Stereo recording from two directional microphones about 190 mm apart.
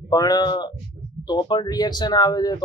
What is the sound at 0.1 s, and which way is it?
Speech, 20° left (ahead or behind).